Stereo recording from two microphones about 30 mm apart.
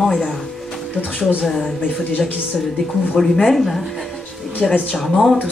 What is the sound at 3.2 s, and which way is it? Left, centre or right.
Speech, centre.